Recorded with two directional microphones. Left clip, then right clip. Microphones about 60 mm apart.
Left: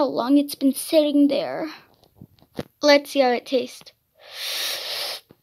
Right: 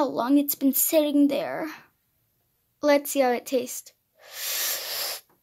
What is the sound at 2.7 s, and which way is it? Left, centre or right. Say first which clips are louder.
Speech: left 5 dB; centre.